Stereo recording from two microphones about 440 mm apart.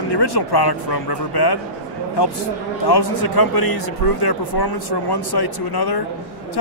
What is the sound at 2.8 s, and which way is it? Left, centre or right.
A man's voice, left.